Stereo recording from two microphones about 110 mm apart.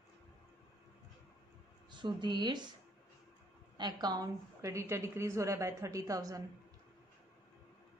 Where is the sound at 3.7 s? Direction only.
40° right (ahead or behind).